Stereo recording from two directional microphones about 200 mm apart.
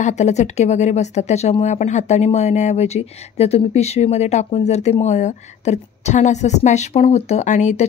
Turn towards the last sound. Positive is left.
turn(degrees=35)  # may be behind; listen again after turning